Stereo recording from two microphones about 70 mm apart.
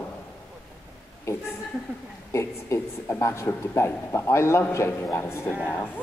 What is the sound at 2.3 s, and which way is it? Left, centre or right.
A woman's voice, left.